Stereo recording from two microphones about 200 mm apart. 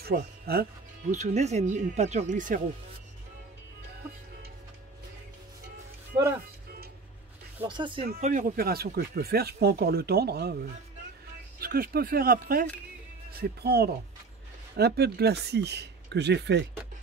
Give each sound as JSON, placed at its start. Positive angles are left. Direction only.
{"t": 0.0, "sound": "speech", "side_deg": -50}
{"t": 1.1, "sound": "speech", "side_deg": -35}
{"t": 7.6, "sound": "speech", "side_deg": -25}
{"t": 8.2, "sound": "speech", "side_deg": -40}
{"t": 11.6, "sound": "speech", "side_deg": -50}